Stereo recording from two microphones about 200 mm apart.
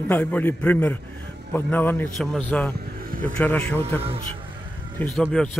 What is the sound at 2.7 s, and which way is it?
Vehicle, 45° right (ahead or behind).